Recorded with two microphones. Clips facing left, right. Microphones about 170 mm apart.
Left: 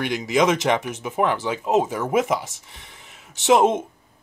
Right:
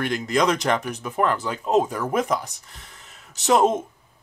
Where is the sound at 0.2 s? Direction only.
5° left (ahead or behind).